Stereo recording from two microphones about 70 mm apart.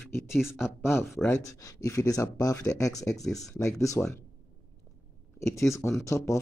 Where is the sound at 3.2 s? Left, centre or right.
Centre.